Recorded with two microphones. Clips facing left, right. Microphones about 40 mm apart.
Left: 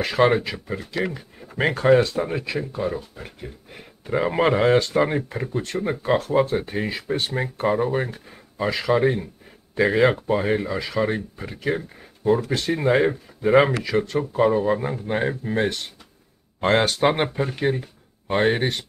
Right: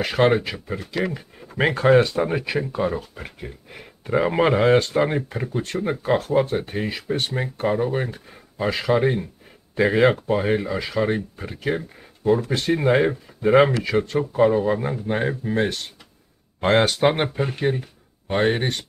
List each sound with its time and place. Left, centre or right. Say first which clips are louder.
0.0 s speech: even; centre
2.7 s speech: right 2 dB; right
4.0 s speech: right 1 dB; centre